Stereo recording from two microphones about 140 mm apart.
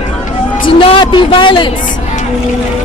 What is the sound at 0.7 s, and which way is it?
Speech, 35° left (ahead or behind).